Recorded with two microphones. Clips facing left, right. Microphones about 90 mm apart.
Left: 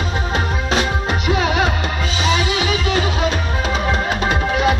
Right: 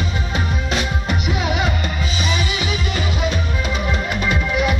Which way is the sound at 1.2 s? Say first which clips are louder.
Left 5 dB; 90° left.